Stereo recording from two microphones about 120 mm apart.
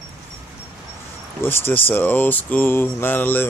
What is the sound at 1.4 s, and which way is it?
Speech, 20° left (ahead or behind).